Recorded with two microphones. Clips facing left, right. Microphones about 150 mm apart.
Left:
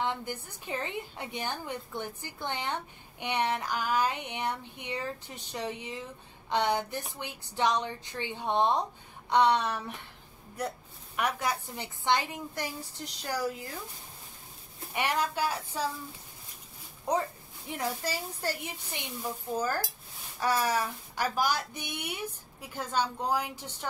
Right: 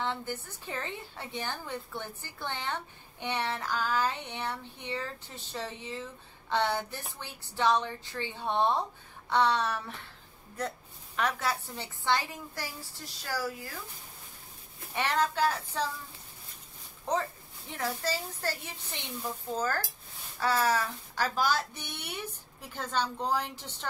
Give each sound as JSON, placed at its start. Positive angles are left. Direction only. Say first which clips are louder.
{"t": 0.0, "sound": "a woman's voice", "louder": "left 1 dB", "side_deg": 15}
{"t": 15.0, "sound": "a woman's voice", "louder": "right 1 dB", "side_deg": 10}
{"t": 17.1, "sound": "a woman's voice", "louder": "left 1 dB", "side_deg": 10}